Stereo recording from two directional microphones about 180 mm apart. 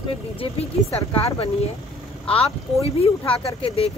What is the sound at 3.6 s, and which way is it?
Speech, 35° left (ahead or behind).